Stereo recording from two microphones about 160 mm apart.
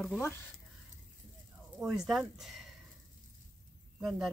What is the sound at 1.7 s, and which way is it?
Speech, 20° right (ahead or behind).